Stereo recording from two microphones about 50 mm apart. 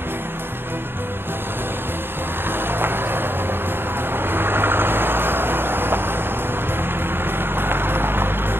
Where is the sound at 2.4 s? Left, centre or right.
Right.